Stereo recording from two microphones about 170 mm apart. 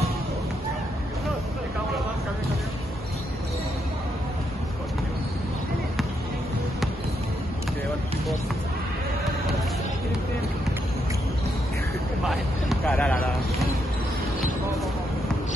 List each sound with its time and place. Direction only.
12.3 s vehicle: centre (ahead or behind)